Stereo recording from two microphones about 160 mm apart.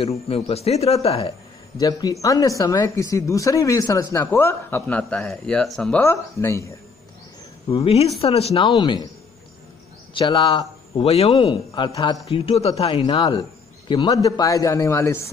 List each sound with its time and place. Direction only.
0.3 s a man's voice: 40° left (ahead or behind)
1.8 s speech: 25° left (ahead or behind)
7.7 s a man's voice: 40° left (ahead or behind)
10.1 s a man's voice: 25° left (ahead or behind)
13.0 s speech: 30° left (ahead or behind)